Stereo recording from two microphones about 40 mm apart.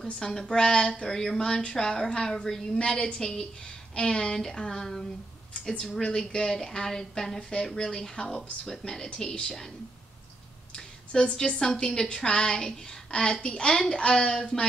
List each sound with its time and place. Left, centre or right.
0.2 s a woman's voice: centre
6.0 s a woman's voice: centre
11.1 s a woman's voice: left
11.6 s a woman's voice: centre